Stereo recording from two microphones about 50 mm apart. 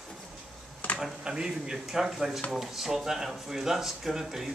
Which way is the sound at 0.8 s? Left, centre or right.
Left.